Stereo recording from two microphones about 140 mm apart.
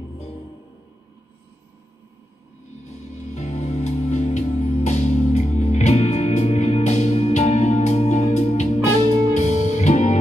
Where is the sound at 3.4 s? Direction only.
55° left (ahead or behind).